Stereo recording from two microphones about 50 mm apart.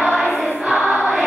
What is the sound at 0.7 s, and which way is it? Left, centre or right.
Choir, centre.